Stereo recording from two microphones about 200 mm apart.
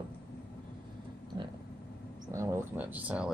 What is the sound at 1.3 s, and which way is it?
Vehicle, 25° right (ahead or behind).